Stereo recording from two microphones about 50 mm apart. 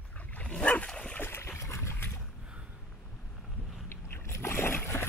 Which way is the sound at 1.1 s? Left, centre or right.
Left.